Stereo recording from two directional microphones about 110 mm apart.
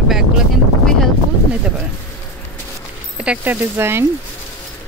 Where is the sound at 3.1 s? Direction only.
10° right (ahead or behind).